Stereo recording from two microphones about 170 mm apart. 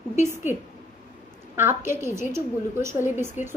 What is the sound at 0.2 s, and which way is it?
Speech, 10° right (ahead or behind).